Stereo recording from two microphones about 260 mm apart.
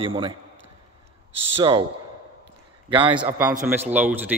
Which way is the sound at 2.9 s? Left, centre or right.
Centre.